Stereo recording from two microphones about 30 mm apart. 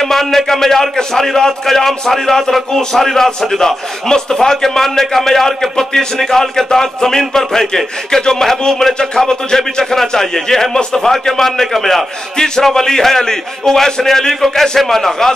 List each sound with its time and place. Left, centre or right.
0.0 s a man's voice: centre